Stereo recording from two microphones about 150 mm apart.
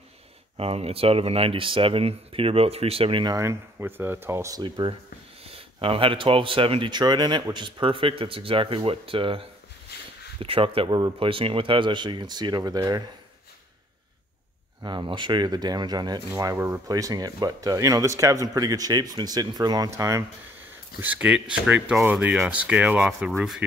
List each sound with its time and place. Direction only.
0.6 s speech: 40° right (ahead or behind)
3.3 s speech: 15° right (ahead or behind)
4.6 s speech: 35° right (ahead or behind)
14.8 s speech: 30° right (ahead or behind)
21.0 s speech: 10° right (ahead or behind)